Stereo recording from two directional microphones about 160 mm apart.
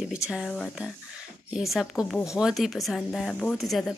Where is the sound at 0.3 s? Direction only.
Centre (ahead or behind).